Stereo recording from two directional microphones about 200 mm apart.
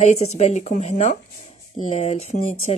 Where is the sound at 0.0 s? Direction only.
35° left (ahead or behind).